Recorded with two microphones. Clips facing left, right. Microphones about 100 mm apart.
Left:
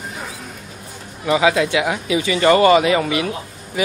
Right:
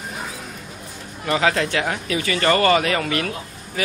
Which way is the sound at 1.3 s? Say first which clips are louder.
Left 4 dB; 10° left (ahead or behind).